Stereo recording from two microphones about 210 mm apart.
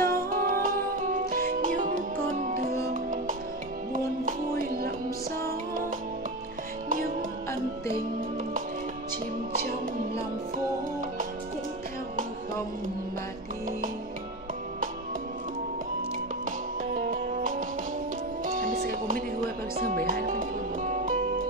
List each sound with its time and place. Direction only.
0.0 s music: 45° right (ahead or behind)
6.9 s music: 40° right (ahead or behind)
16.4 s music: 40° right (ahead or behind)